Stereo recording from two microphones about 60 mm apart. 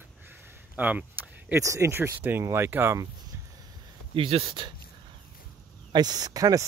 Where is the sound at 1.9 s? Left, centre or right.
Right.